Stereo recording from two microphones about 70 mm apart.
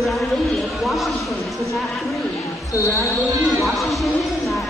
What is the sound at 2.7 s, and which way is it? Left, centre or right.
Speech, left.